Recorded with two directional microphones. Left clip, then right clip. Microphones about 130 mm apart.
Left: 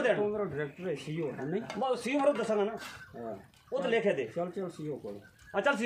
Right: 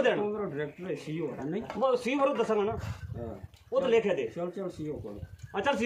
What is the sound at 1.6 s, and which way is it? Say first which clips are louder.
Speech: right 6 dB; 30° left (ahead or behind).